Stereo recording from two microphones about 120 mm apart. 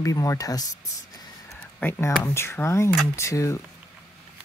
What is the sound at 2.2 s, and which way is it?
Speech, 20° left (ahead or behind).